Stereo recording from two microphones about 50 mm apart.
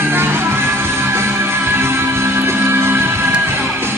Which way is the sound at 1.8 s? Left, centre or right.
Right.